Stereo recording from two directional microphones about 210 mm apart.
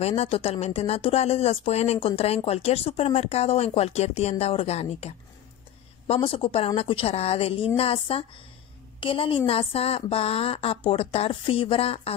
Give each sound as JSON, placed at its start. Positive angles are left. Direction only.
{"t": 0.0, "sound": "speech", "side_deg": 30}